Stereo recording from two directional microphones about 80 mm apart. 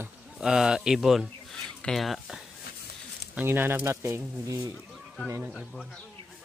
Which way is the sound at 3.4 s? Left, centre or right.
Right.